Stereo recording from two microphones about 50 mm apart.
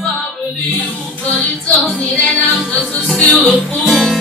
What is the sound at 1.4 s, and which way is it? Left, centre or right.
Music, left.